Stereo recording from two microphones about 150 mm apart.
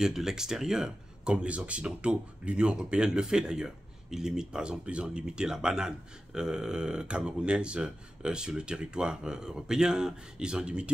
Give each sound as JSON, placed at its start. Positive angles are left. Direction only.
{"t": 0.0, "sound": "speech", "side_deg": -5}